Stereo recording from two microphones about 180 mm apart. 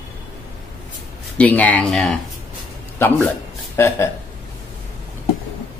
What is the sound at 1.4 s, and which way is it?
A man's voice, 10° left (ahead or behind).